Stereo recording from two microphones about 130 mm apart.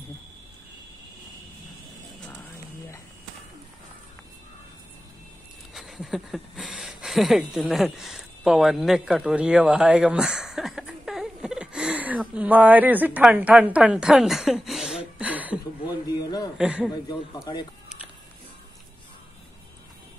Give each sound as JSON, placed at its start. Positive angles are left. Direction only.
{"t": 5.8, "sound": "speech", "side_deg": 0}
{"t": 15.8, "sound": "a sound", "side_deg": 30}
{"t": 16.5, "sound": "a man's voice", "side_deg": -5}
{"t": 17.1, "sound": "a man's voice", "side_deg": 35}